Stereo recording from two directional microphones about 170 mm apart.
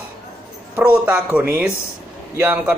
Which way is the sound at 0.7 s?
10° right (ahead or behind).